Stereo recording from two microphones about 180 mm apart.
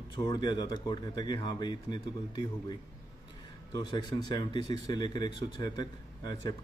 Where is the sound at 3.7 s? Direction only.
25° left (ahead or behind).